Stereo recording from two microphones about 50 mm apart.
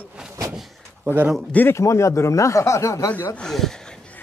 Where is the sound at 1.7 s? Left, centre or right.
Left.